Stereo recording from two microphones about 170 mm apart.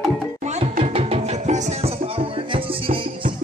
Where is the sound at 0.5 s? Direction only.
40° right (ahead or behind).